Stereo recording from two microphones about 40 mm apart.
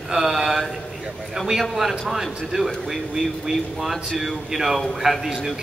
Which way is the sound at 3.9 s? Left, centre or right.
Centre.